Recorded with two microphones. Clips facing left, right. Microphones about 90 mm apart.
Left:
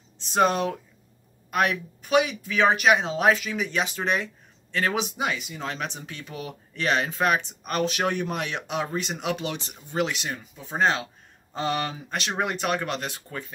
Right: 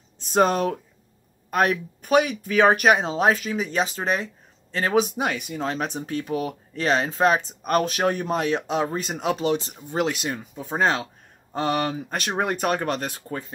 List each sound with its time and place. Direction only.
0.2 s speech: 40° right (ahead or behind)